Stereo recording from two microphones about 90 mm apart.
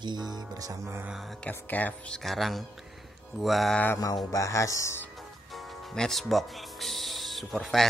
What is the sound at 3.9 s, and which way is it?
Music, 40° left (ahead or behind).